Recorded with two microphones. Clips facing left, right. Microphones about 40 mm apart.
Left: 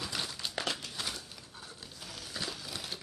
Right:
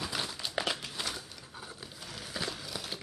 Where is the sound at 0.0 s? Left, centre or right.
Centre.